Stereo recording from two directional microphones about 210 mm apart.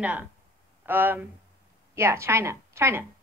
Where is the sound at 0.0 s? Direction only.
5° right (ahead or behind).